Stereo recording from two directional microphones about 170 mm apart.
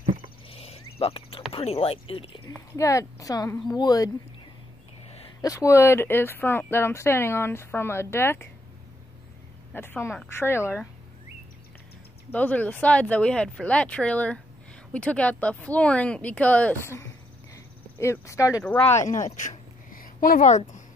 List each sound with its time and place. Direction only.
0.5 s a sound: 35° left (ahead or behind)
1.5 s speech: 35° left (ahead or behind)
2.7 s speech: 20° left (ahead or behind)
5.4 s speech: 20° left (ahead or behind)
9.8 s speech: 15° left (ahead or behind)
12.3 s speech: 10° left (ahead or behind)
19.0 s speech: 45° left (ahead or behind)